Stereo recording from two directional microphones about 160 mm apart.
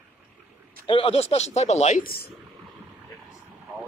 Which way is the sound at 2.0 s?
70° left (ahead or behind).